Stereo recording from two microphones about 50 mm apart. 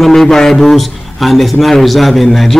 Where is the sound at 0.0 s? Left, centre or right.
Centre.